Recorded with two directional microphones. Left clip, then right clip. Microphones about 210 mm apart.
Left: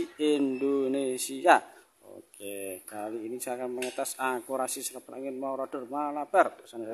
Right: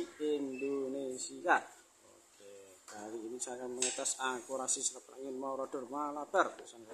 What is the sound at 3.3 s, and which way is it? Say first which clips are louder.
Speech: left 9 dB; 45° left (ahead or behind).